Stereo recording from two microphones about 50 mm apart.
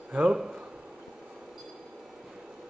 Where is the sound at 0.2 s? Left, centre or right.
Centre.